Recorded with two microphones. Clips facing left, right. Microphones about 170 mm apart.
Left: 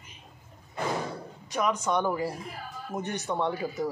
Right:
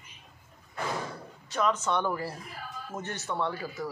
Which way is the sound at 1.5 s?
10° left (ahead or behind).